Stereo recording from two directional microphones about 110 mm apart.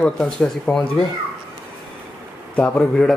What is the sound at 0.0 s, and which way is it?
Speech, 10° left (ahead or behind).